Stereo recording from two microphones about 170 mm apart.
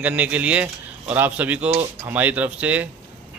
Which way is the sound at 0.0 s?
10° right (ahead or behind).